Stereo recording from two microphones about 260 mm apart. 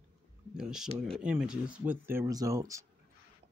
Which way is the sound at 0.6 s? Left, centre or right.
Centre.